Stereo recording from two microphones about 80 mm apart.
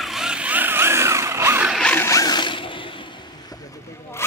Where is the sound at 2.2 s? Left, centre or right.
Left.